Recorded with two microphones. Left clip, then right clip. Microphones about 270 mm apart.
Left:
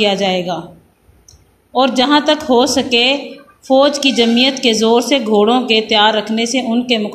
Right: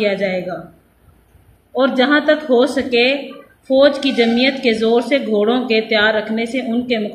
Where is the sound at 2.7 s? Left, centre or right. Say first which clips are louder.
Left 2 dB; left.